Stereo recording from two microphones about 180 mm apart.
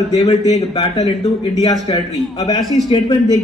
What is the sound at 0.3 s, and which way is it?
Speech, 35° left (ahead or behind).